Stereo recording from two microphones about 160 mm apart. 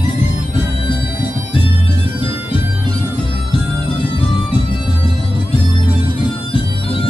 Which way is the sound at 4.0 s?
35° left (ahead or behind).